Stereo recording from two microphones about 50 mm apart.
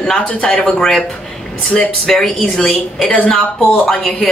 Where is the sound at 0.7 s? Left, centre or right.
Centre.